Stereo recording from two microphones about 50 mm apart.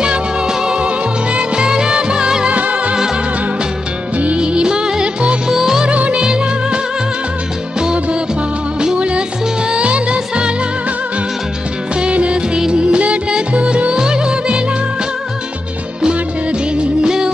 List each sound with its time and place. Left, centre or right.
0.0 s music: centre
2.5 s music: right
4.2 s music: right
5.5 s music: centre
5.9 s music: right
7.8 s music: centre
12.0 s music: right
16.7 s music of bollywood: centre